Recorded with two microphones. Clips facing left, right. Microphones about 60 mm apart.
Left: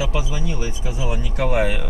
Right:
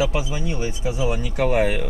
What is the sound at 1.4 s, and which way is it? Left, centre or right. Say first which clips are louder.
Speech: right 1 dB; centre.